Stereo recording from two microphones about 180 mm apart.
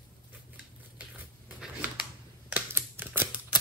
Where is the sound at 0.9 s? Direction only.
10° right (ahead or behind).